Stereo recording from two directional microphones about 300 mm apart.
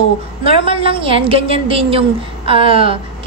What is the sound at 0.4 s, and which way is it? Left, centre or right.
A woman's voice, centre.